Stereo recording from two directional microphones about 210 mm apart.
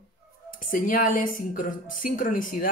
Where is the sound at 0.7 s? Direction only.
40° left (ahead or behind).